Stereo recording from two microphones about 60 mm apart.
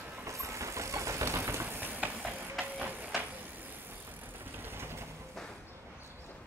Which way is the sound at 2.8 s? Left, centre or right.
Right.